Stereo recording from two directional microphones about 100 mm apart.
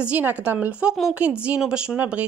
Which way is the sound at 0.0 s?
15° right (ahead or behind).